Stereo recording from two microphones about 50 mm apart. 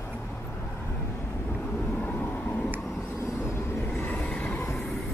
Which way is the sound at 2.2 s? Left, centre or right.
Left.